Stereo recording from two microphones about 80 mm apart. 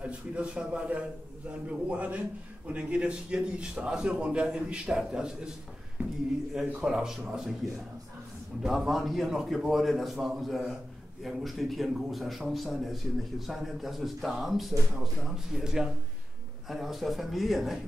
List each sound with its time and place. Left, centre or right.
0.0 s a man's voice: centre
6.5 s a man's voice: centre
8.6 s speech: centre